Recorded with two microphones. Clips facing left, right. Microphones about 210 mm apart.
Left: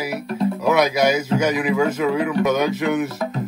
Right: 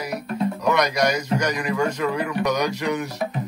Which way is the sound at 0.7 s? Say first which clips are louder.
Left 4 dB; 5° left (ahead or behind).